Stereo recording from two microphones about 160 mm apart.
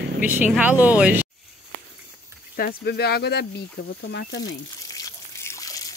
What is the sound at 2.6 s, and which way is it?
Speech, 75° left (ahead or behind).